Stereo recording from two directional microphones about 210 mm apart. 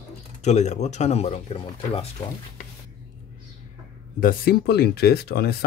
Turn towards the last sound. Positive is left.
turn(degrees=50)  # may be behind; listen again after turning